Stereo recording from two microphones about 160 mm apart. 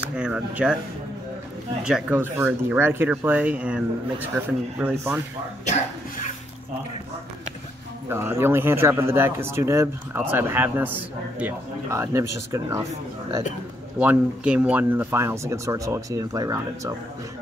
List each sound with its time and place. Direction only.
0.0 s speech: 5° right (ahead or behind)
1.8 s speech: 5° right (ahead or behind)
8.1 s speech: 15° right (ahead or behind)
13.9 s speech: 5° right (ahead or behind)